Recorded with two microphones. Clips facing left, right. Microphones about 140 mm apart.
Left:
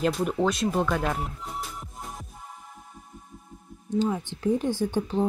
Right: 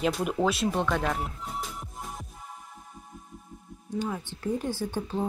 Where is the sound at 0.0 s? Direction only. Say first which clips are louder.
Left 2 dB; centre (ahead or behind).